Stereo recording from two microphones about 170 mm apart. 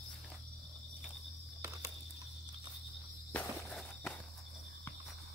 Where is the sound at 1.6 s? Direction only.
20° right (ahead or behind).